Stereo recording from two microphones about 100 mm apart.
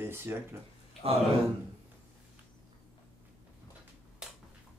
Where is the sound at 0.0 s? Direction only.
25° right (ahead or behind).